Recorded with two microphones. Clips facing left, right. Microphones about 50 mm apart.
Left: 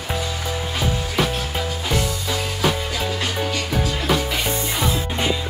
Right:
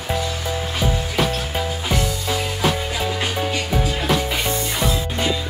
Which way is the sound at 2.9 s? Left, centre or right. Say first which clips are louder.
Right 1 dB; centre.